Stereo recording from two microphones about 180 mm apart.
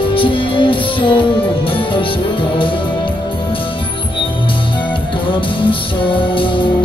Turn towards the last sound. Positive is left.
turn(degrees=30)  # may be behind; listen again after turning